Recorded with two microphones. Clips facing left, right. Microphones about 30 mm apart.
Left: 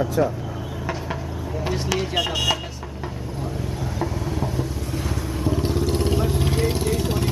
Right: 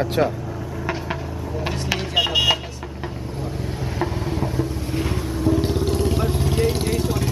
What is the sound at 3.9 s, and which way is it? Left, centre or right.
Vehicle, right.